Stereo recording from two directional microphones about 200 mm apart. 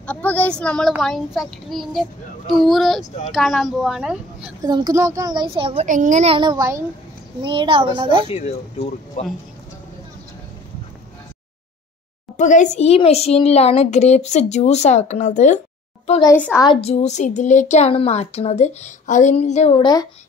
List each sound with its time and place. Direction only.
0.0 s a child's voice: 5° left (ahead or behind)
4.6 s a child's voice: 20° right (ahead or behind)
5.9 s a child's voice: 40° right (ahead or behind); by 8.3 s 25° right (ahead or behind)
8.3 s a child's voice: 30° left (ahead or behind)
12.4 s a child's voice: 35° left (ahead or behind)
16.1 s a child's voice: 20° left (ahead or behind)
16.3 s a woman's voice: 10° left (ahead or behind)
16.6 s a child's voice: 30° left (ahead or behind)